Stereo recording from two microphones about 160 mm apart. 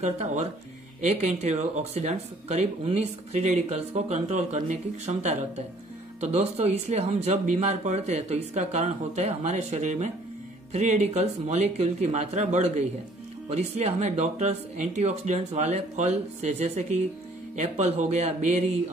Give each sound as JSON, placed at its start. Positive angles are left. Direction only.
{"t": 0.0, "sound": "speech", "side_deg": -45}